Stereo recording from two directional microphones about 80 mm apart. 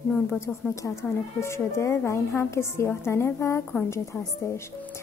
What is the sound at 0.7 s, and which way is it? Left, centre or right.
Speech, left.